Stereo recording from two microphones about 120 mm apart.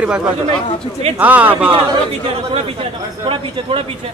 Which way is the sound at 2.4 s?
50° right (ahead or behind).